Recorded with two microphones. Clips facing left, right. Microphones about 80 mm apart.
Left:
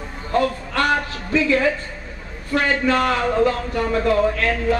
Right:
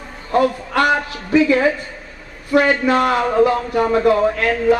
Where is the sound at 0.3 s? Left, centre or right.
Centre.